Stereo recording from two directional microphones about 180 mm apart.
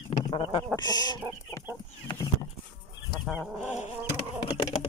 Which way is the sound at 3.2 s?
5° right (ahead or behind).